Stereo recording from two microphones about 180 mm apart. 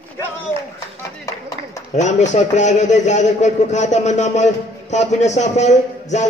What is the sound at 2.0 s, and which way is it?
A man's voice, 40° left (ahead or behind).